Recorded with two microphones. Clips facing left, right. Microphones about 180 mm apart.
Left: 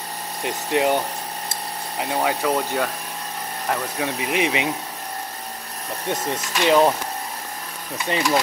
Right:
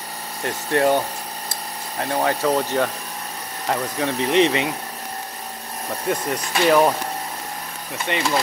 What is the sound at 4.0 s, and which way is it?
Speech, 10° left (ahead or behind).